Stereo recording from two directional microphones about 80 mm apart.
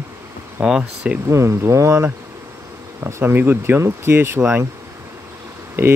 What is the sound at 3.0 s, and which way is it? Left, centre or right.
Speech, right.